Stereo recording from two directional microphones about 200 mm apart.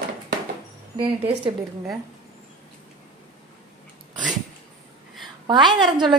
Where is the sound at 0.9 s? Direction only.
25° right (ahead or behind).